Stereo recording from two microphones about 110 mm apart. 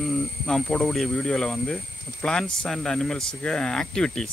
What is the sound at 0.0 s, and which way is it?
Speech, 5° left (ahead or behind).